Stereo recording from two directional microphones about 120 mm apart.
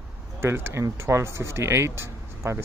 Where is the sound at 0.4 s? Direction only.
20° right (ahead or behind).